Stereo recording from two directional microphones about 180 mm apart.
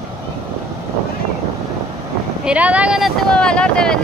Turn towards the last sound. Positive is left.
turn(degrees=5)  # may be behind; listen again after turning